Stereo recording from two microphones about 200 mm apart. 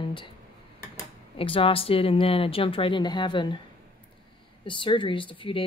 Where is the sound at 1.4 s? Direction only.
25° left (ahead or behind).